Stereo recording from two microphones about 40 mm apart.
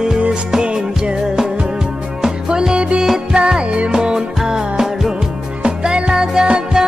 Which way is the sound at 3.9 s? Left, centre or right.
Centre.